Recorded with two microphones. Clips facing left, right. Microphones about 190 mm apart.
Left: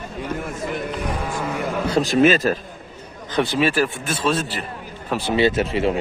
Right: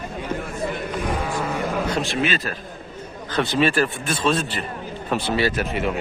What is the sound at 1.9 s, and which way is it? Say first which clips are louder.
Speech: left 7 dB; 40° left (ahead or behind).